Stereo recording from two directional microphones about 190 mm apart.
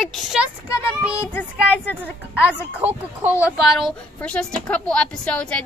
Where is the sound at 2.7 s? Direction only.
10° right (ahead or behind).